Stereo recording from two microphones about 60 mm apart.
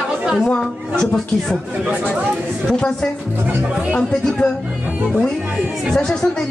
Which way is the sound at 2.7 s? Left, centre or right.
Centre.